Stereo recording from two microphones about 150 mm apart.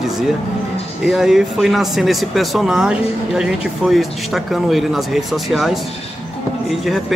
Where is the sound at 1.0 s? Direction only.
Centre (ahead or behind).